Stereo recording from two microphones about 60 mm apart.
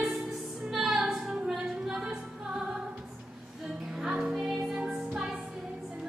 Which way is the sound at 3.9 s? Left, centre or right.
Centre.